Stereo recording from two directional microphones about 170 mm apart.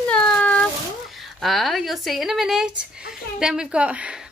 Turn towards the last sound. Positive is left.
turn(degrees=-5)  # may be behind; listen again after turning